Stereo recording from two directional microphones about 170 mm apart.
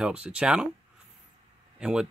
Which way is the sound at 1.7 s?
5° right (ahead or behind).